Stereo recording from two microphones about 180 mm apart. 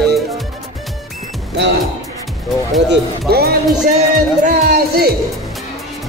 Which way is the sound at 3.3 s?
60° right (ahead or behind).